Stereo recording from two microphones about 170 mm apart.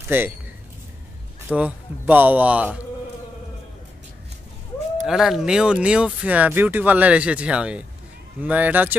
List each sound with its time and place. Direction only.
0.1 s speech: 10° right (ahead or behind)
1.5 s speech: 10° right (ahead or behind)
5.0 s speech: 5° right (ahead or behind)